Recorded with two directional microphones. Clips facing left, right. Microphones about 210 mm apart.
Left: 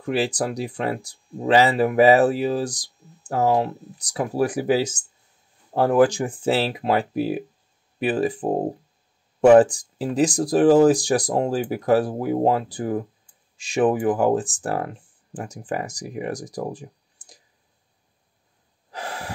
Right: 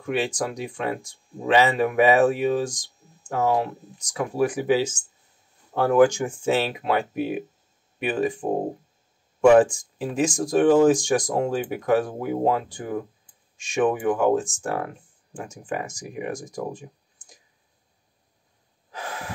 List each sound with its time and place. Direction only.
0.0 s speech: 35° left (ahead or behind)
9.6 s speech: 35° left (ahead or behind)
18.9 s gasp: 35° left (ahead or behind)